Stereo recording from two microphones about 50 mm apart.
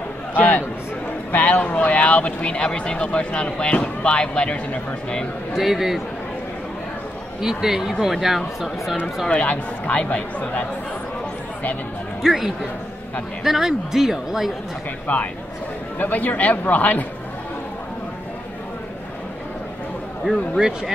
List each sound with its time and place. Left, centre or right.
0.4 s a sound: left
1.3 s speech: left; by 4.6 s centre
5.6 s speech: centre
7.4 s speech: centre
9.3 s speech: left
12.2 s speech: centre
15.1 s speech: left
20.2 s speech: centre